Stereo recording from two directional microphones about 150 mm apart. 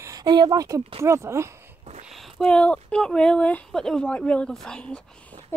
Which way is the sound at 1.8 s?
50° right (ahead or behind).